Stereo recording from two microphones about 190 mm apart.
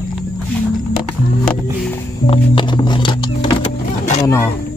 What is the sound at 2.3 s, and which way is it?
Music, 25° left (ahead or behind).